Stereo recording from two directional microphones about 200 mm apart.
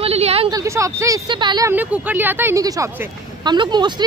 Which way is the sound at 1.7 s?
10° right (ahead or behind).